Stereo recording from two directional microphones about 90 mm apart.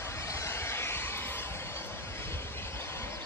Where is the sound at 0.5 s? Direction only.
30° left (ahead or behind).